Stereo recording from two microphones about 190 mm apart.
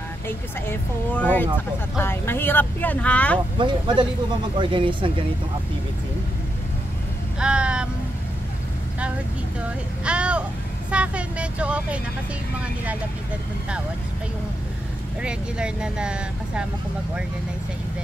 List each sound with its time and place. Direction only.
0.7 s speech: 10° left (ahead or behind)
3.5 s speech: 25° right (ahead or behind)
7.3 s a sound: 5° right (ahead or behind)
10.0 s a sound: 5° right (ahead or behind)
10.9 s speech: 5° right (ahead or behind)
15.2 s speech: 5° right (ahead or behind)